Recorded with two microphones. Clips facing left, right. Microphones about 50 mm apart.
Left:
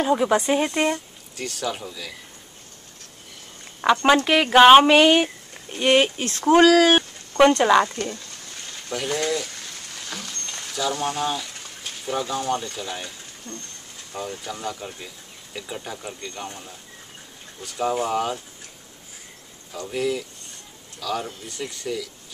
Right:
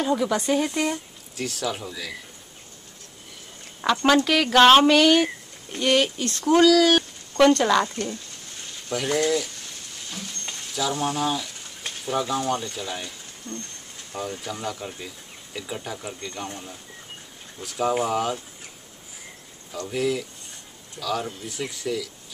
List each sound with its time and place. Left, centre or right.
0.0 s speech: left
0.9 s speech: centre
3.8 s speech: centre; by 7.1 s left
7.3 s speech: centre
8.9 s speech: centre
10.7 s speech: centre
13.5 s speech: right
14.4 s speech: centre
19.9 s speech: centre